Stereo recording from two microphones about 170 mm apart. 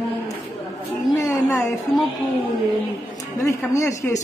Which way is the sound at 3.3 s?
20° left (ahead or behind).